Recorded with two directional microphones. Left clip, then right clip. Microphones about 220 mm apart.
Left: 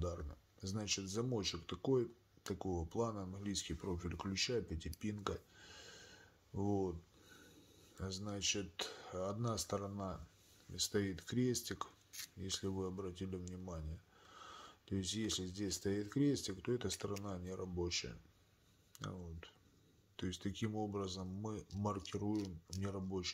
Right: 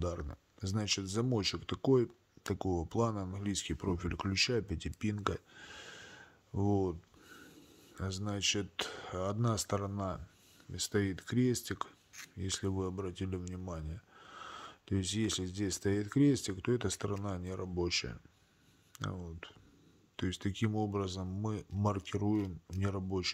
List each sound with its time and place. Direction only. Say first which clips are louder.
0.0 s speech: right 6 dB; 35° right (ahead or behind)